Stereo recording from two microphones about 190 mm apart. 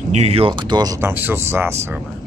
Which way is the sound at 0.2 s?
30° right (ahead or behind).